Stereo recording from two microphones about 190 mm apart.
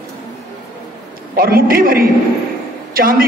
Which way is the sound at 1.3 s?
50° right (ahead or behind).